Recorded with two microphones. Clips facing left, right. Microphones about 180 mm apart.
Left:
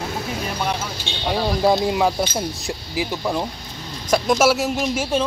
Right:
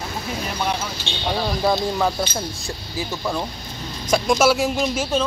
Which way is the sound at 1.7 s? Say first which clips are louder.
Left 2 dB; 15° left (ahead or behind).